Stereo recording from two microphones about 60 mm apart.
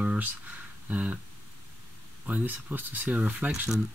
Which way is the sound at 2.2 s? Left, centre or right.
Right.